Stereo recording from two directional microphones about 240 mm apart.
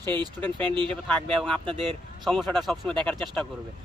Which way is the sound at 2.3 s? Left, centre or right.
Centre.